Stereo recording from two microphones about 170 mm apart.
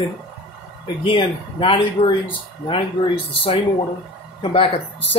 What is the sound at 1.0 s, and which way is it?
Speech, 30° left (ahead or behind).